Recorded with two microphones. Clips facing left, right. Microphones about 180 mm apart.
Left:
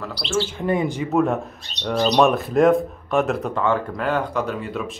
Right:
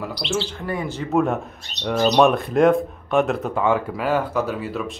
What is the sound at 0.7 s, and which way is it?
Speech, 15° left (ahead or behind).